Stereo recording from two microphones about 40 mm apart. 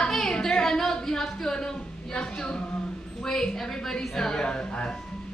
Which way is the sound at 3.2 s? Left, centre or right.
Centre.